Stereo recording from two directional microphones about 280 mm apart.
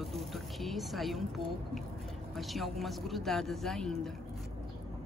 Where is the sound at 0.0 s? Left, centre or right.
Centre.